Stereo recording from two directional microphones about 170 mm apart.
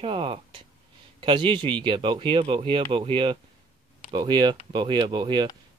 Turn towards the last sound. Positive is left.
turn(degrees=-25)  # may be behind; listen again after turning